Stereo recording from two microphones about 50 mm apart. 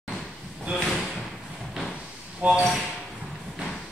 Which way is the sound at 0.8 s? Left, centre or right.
Centre.